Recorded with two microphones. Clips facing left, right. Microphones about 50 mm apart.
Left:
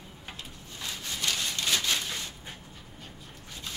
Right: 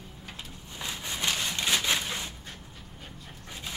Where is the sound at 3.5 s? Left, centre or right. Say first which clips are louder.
Right 2 dB; centre.